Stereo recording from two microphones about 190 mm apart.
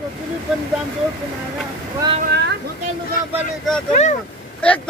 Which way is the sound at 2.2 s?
60° right (ahead or behind).